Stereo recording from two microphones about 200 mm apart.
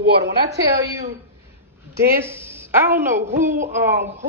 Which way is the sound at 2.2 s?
10° right (ahead or behind).